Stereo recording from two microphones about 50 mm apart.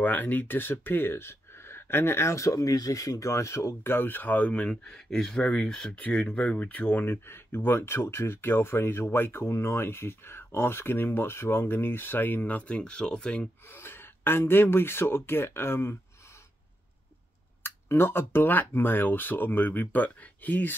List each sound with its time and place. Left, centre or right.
0.0 s speech: left
3.8 s speech: left
4.8 s speech: centre
6.1 s speech: left
7.1 s speech: left; by 13.4 s centre
13.7 s speech: left
17.6 s speech: left